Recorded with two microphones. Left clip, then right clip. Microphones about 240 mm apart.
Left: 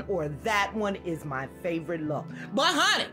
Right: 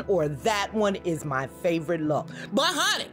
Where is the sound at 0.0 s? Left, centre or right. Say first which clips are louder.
Right 6 dB; right.